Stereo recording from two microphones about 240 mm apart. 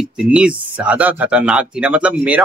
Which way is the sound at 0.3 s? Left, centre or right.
Centre.